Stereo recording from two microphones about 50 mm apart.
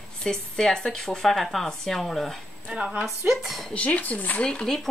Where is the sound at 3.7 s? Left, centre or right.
Left.